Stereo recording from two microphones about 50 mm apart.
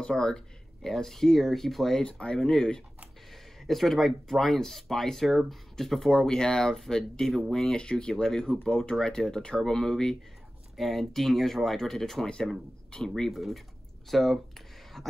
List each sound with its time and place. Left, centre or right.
0.0 s speech: centre
2.0 s speech: centre
3.6 s speech: centre
13.3 s speech: centre